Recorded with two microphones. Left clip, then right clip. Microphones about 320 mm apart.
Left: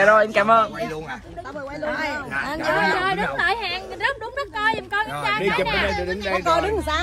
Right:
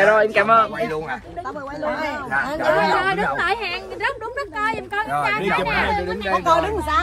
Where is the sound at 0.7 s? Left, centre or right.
Centre.